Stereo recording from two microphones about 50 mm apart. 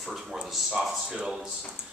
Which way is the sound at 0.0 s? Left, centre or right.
Centre.